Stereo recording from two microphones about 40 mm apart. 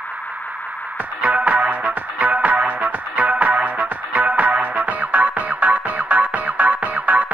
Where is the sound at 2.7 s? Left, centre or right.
Right.